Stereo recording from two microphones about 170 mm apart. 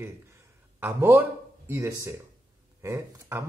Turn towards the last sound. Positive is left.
turn(degrees=-15)  # may be behind; listen again after turning